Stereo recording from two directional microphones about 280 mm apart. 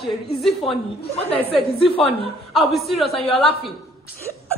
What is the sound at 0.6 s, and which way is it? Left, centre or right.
Speech, centre.